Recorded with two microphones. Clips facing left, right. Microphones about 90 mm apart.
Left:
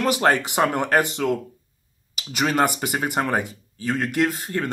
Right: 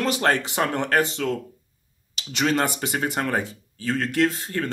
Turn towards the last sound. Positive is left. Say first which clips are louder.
# even
turn(degrees=15)  # may be behind; listen again after turning